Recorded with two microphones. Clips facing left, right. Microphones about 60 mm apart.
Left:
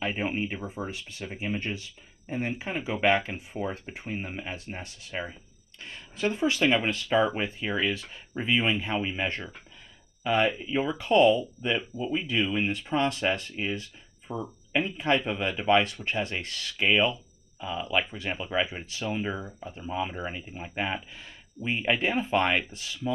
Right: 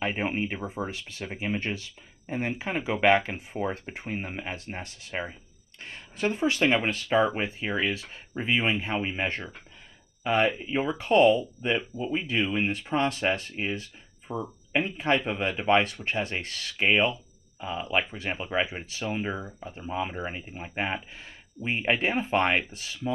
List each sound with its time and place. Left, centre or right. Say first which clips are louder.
0.0 s speech: right 1 dB; right
0.6 s speech: right 2 dB; centre
0.8 s speech: right 1 dB; right
14.2 s speech: right 1 dB; centre
14.9 s speech: even; right